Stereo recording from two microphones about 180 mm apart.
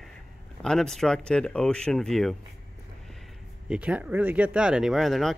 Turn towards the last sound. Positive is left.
turn(degrees=0)  # may be behind; listen again after turning